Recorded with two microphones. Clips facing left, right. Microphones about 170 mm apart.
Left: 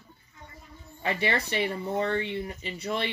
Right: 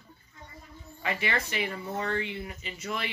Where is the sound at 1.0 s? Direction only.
30° left (ahead or behind).